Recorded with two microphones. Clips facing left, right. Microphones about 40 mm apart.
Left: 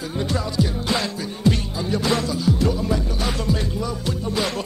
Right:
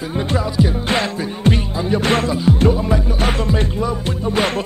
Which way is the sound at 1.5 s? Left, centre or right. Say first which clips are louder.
Right 5 dB; right.